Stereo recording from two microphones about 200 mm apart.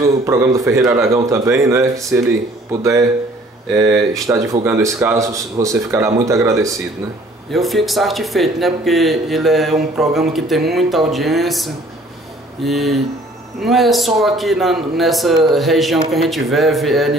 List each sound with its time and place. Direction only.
0.0 s speech: 15° right (ahead or behind)
4.1 s speech: 15° right (ahead or behind)
7.5 s speech: centre (ahead or behind)